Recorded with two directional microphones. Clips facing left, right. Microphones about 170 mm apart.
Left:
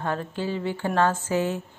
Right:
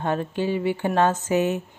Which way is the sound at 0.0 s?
20° right (ahead or behind).